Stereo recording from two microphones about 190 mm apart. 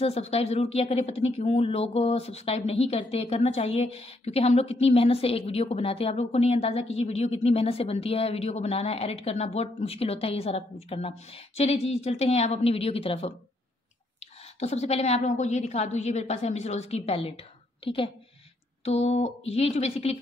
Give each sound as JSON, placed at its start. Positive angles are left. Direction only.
{"t": 0.0, "sound": "speech", "side_deg": 30}
{"t": 14.6, "sound": "a woman's voice", "side_deg": 35}